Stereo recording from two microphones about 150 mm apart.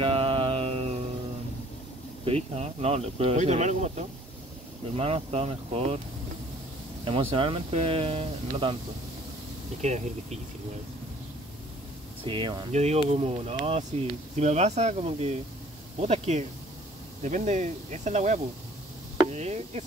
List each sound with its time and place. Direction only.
0.0 s mantra: 40° right (ahead or behind)
2.2 s speech: 45° right (ahead or behind)
7.1 s speech: 40° right (ahead or behind)
9.8 s speech: 50° right (ahead or behind)
12.3 s speech: 35° right (ahead or behind)
12.7 s speech: 45° right (ahead or behind)